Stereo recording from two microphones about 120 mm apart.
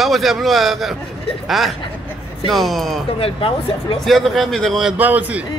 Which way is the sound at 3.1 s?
50° left (ahead or behind).